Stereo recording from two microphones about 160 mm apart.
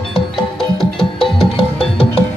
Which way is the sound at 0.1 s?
Centre (ahead or behind).